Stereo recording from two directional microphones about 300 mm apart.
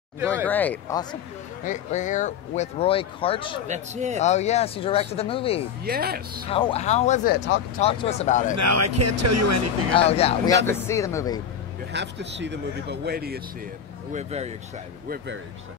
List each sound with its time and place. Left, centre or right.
0.5 s speech: centre
1.6 s speech: left
3.6 s speech: right
4.2 s speech: left
5.9 s speech: right
6.4 s speech: centre
7.4 s speech: left
7.8 s speech: centre
8.5 s speech: right
9.9 s speech: centre
11.9 s speech: right